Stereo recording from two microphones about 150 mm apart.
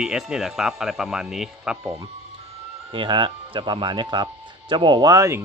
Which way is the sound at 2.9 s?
35° right (ahead or behind).